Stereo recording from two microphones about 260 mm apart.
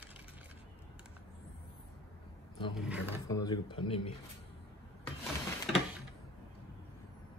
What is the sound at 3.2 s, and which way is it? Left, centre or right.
Speech, centre.